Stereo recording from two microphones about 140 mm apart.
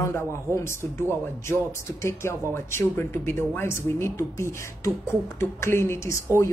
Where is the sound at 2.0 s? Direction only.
20° left (ahead or behind).